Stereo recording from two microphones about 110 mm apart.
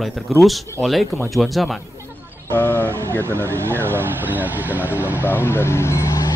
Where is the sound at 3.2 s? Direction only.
25° right (ahead or behind).